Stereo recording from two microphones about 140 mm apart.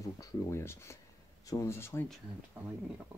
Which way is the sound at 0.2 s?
20° left (ahead or behind).